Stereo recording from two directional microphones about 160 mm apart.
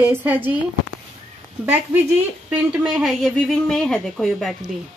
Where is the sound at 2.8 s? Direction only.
Centre (ahead or behind).